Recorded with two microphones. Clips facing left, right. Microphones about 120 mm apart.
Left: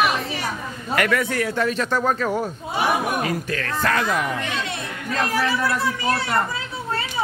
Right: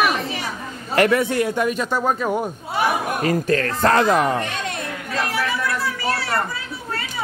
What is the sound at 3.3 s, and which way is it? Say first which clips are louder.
Speech: right 6 dB; 40° right (ahead or behind).